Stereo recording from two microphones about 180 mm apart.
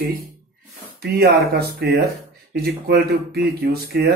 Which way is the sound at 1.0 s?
60° right (ahead or behind).